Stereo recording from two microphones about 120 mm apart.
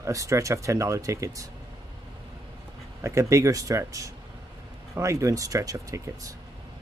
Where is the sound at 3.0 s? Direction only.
25° right (ahead or behind).